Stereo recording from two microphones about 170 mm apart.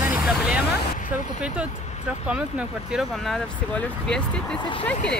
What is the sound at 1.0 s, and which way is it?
Speech, 50° left (ahead or behind).